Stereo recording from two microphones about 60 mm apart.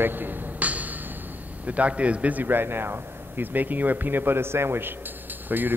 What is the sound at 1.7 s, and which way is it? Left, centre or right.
A man's voice, right.